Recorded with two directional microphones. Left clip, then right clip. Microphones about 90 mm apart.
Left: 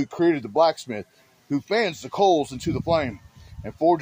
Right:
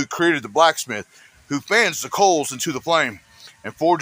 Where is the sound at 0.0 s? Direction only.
20° left (ahead or behind).